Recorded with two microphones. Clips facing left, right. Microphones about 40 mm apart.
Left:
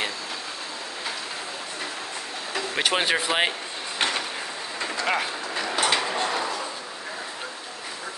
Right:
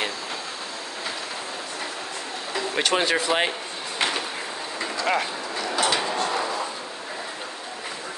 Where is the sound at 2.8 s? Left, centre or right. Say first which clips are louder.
Right 1 dB; centre.